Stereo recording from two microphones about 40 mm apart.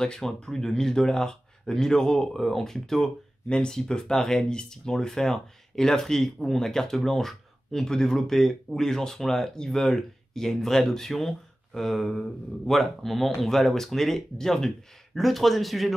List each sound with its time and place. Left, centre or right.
0.0 s speech: centre
3.4 s speech: left; by 15.9 s centre